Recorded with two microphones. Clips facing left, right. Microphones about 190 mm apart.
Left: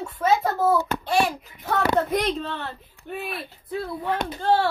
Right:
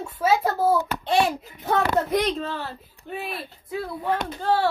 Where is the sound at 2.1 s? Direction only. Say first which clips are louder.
Right 1 dB; centre (ahead or behind).